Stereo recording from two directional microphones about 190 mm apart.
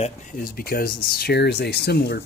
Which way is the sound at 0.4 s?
50° left (ahead or behind).